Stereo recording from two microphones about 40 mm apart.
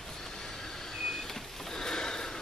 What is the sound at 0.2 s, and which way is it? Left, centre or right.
Vehicle, centre.